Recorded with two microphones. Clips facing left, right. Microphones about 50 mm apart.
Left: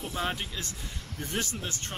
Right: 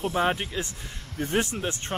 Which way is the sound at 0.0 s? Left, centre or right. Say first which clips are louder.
Right 7 dB; right.